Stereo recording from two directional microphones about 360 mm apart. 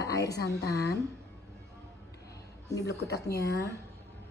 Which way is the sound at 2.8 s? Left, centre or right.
Left.